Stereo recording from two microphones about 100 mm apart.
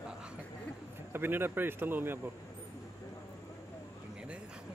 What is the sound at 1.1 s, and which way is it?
Speech, 20° right (ahead or behind).